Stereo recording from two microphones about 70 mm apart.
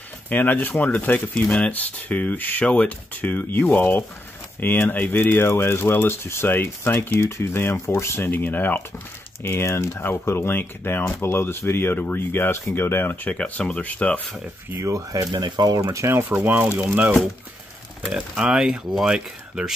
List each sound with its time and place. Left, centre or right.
0.3 s speech: left
9.4 s speech: left
13.3 s speech: centre
14.9 s speech: right
15.3 s speech: right
16.1 s speech: right
16.4 s speech: right
18.1 s speech: centre